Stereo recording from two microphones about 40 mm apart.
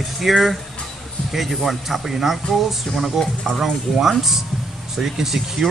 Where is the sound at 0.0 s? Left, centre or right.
Centre.